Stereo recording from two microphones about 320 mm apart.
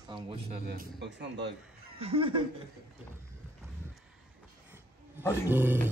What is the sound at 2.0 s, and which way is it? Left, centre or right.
Speech, centre.